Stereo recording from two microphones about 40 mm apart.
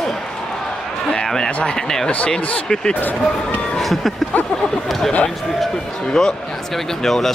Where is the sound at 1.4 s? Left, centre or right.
Left.